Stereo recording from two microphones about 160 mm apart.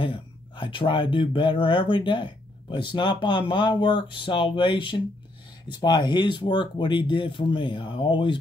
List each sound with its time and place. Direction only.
0.0 s speech: 30° left (ahead or behind)